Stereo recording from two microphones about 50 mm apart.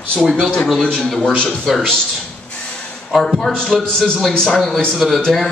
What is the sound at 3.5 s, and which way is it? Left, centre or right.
Speech, centre.